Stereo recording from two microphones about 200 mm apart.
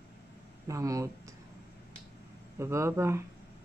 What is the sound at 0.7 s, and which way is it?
Speech, 15° right (ahead or behind).